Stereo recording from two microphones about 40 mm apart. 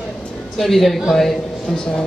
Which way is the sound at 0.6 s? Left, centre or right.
Centre.